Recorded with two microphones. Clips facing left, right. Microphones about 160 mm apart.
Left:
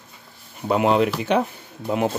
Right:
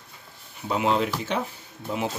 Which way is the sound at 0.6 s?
55° left (ahead or behind).